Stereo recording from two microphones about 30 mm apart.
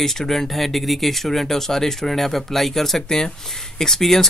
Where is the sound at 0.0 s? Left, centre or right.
Centre.